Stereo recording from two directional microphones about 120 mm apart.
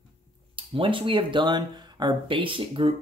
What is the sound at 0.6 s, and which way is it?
Speech, 45° right (ahead or behind).